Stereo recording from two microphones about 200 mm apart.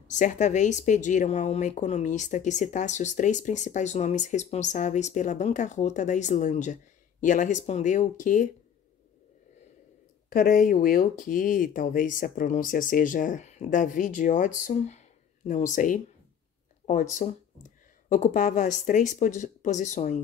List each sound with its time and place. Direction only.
0.1 s speech: 40° left (ahead or behind)
10.3 s speech: 45° left (ahead or behind)